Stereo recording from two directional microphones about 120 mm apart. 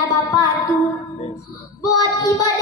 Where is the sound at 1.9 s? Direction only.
30° left (ahead or behind).